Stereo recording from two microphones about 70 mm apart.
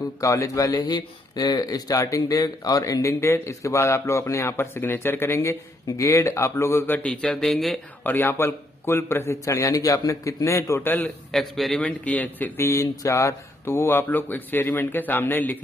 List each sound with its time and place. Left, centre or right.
0.2 s speech: left
7.0 s a sound: centre
7.2 s speech: centre
8.0 s a man's voice: left
9.4 s speech: left
10.8 s a man's voice: left
11.3 s speech: centre
11.8 s a man's voice: left
12.5 s a man's voice: left